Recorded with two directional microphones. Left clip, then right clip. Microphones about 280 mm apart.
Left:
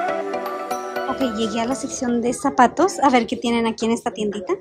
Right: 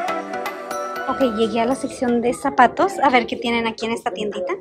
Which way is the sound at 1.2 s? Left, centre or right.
Centre.